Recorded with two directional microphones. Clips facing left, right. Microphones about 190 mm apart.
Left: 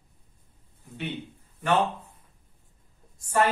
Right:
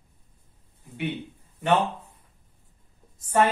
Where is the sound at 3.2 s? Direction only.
20° right (ahead or behind).